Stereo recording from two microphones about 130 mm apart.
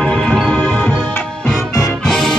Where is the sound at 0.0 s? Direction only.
5° left (ahead or behind).